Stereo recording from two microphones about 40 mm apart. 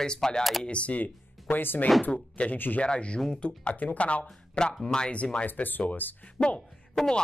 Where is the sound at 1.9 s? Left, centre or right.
Centre.